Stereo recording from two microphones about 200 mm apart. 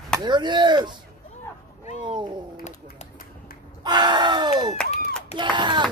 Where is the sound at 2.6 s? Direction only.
35° left (ahead or behind).